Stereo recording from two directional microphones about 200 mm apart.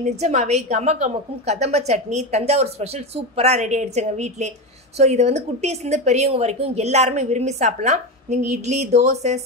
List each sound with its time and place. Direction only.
0.0 s a woman's voice: 35° right (ahead or behind)